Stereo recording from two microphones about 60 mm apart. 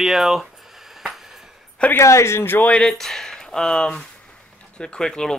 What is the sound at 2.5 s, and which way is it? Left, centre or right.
Speech, left.